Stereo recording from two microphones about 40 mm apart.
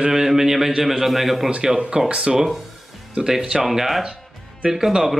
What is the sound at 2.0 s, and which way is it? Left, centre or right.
Speech, right.